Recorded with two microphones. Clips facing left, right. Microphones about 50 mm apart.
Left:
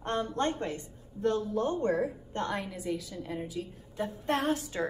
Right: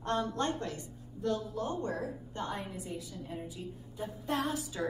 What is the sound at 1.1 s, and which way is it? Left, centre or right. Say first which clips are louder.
Speech: left 5 dB; left.